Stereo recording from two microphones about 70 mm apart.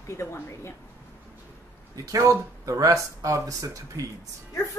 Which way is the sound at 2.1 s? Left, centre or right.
Right.